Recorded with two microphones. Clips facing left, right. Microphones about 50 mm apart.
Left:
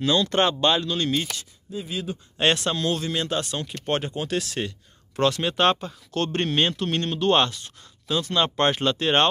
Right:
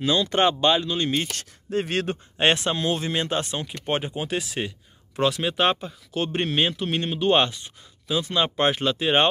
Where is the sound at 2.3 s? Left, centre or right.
Right.